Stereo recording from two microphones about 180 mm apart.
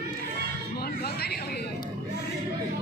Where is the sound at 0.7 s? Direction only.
60° left (ahead or behind).